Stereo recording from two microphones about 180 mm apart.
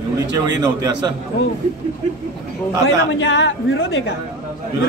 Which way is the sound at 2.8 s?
90° left.